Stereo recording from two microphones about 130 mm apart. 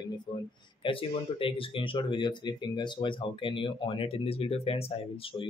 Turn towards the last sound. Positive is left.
turn(degrees=45)  # may be behind; listen again after turning